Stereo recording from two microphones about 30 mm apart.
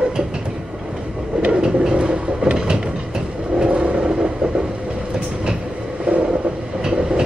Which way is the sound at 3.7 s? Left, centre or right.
Right.